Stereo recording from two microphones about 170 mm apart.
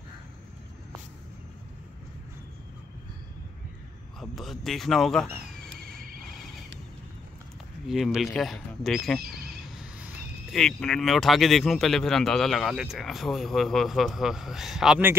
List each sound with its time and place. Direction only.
4.2 s speech: centre (ahead or behind)
7.8 s speech: centre (ahead or behind)
9.8 s a sound: 5° right (ahead or behind)
10.6 s speech: 5° left (ahead or behind)